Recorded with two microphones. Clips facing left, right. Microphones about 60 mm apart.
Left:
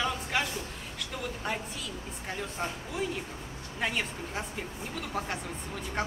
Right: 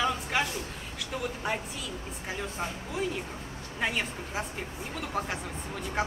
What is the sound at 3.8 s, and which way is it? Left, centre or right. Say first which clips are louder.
Speech: right 1 dB; centre.